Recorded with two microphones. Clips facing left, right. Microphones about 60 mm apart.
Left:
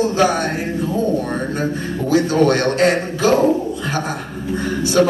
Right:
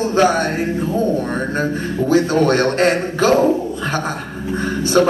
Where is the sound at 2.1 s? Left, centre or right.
Right.